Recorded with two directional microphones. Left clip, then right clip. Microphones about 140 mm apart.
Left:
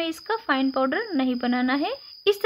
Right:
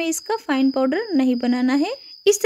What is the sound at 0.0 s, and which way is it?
Speech, 20° right (ahead or behind).